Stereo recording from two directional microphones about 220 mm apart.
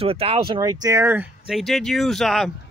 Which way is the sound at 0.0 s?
25° right (ahead or behind).